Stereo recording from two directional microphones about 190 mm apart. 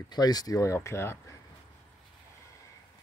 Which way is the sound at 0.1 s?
20° left (ahead or behind).